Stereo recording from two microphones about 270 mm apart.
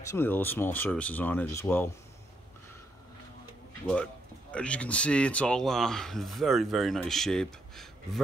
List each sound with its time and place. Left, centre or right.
0.0 s speech: centre
3.8 s speech: centre